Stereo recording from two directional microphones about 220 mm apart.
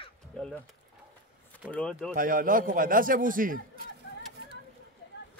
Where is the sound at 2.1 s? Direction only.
40° right (ahead or behind).